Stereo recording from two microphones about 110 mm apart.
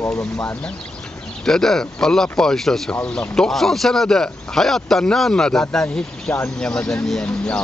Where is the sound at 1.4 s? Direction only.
5° left (ahead or behind).